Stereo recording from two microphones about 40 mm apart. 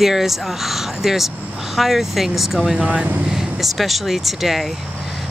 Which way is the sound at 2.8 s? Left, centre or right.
Right.